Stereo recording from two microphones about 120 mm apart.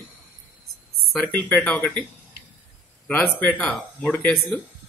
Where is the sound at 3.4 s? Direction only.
10° left (ahead or behind).